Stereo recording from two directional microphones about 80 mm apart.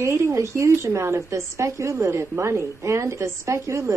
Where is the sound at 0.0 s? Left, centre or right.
Right.